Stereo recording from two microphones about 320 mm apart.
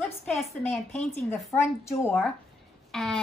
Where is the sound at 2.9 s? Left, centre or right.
Centre.